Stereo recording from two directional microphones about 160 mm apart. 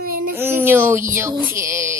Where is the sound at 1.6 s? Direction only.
15° right (ahead or behind).